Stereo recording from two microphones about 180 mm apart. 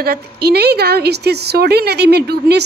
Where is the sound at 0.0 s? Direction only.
60° right (ahead or behind).